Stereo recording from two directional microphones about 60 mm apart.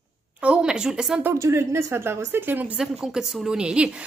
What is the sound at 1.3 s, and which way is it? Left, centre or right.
Speech, right.